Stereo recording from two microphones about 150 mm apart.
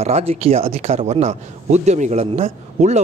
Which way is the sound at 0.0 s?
45° right (ahead or behind).